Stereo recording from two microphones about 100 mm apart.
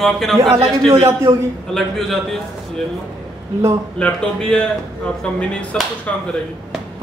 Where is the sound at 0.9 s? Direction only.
30° right (ahead or behind).